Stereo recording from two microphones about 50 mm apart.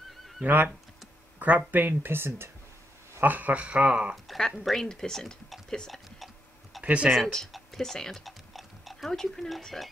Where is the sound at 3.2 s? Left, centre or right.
Right.